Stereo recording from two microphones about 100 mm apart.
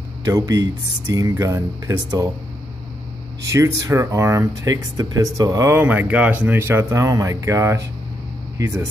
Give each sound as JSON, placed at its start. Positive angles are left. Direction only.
{"t": 0.2, "sound": "speech", "side_deg": -35}
{"t": 3.5, "sound": "speech", "side_deg": -30}
{"t": 5.7, "sound": "speech", "side_deg": -20}